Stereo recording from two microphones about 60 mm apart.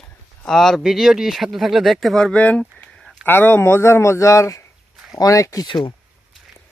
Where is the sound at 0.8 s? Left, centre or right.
Centre.